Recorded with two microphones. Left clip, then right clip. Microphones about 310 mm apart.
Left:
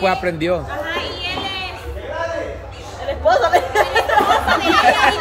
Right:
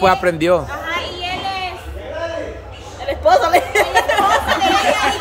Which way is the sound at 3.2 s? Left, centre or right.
Right.